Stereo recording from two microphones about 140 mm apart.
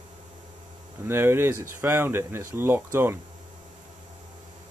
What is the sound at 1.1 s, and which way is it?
Speech, 15° right (ahead or behind).